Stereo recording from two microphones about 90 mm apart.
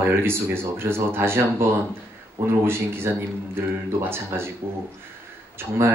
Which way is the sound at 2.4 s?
25° right (ahead or behind).